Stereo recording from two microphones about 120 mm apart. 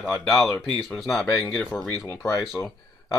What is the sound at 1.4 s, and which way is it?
Speech, 10° left (ahead or behind).